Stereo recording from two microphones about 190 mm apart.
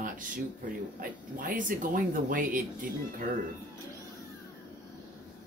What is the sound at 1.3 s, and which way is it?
Speech, 45° right (ahead or behind).